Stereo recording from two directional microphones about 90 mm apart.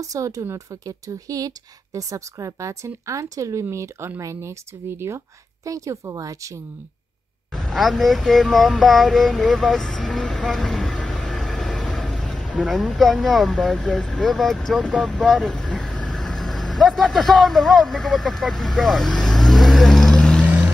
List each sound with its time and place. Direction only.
0.0 s speech: 40° right (ahead or behind)
7.5 s speech: 5° left (ahead or behind)
20.4 s vehicle: 15° right (ahead or behind)